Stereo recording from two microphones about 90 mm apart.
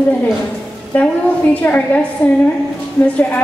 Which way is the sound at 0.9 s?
20° left (ahead or behind).